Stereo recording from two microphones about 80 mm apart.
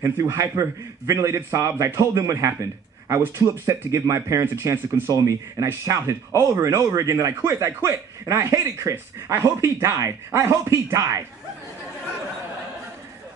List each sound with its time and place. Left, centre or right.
0.0 s speech: right